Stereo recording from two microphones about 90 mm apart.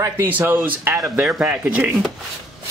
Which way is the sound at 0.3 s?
20° right (ahead or behind).